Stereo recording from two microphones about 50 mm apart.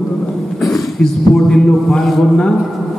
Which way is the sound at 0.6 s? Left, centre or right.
Centre.